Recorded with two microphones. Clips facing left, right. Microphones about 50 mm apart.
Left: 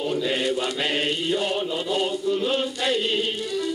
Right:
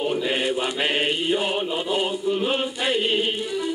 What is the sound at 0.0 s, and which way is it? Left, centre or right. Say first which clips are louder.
Mantra: right 1 dB; right.